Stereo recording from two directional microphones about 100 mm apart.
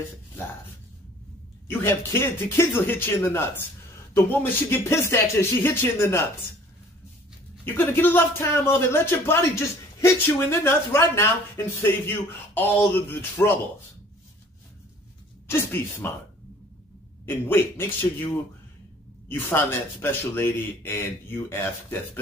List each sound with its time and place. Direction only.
1.7 s speech: 25° left (ahead or behind)
7.6 s speech: 20° left (ahead or behind)
15.4 s speech: 20° left (ahead or behind)
17.3 s speech: 25° left (ahead or behind)